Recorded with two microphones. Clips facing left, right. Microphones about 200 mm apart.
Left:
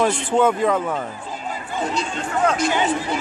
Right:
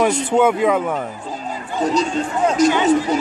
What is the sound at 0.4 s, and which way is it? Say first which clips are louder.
Speech: right 2 dB; 10° right (ahead or behind).